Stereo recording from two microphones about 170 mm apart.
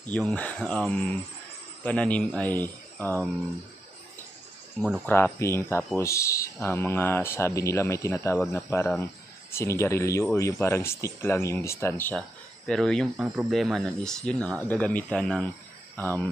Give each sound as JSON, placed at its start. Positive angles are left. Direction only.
{"t": 0.0, "sound": "speech", "side_deg": 10}
{"t": 5.0, "sound": "speech", "side_deg": 15}
{"t": 12.2, "sound": "speech", "side_deg": 5}